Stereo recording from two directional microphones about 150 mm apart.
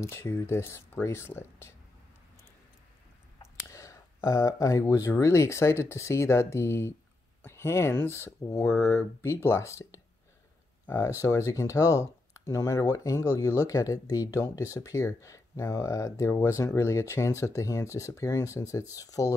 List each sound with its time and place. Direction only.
0.0 s speech: 20° left (ahead or behind)
3.6 s speech: 20° left (ahead or behind)
10.9 s speech: 15° left (ahead or behind)